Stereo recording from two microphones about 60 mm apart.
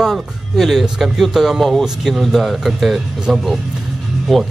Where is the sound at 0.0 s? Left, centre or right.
Centre.